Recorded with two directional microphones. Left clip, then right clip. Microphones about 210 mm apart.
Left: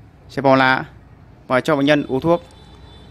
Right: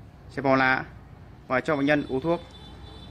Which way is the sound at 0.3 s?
30° left (ahead or behind).